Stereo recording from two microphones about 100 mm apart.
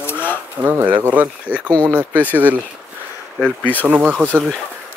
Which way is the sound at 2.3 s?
15° right (ahead or behind).